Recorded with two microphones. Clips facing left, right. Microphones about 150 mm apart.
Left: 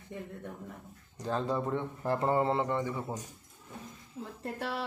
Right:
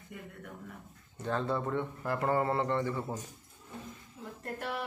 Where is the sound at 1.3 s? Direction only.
15° left (ahead or behind).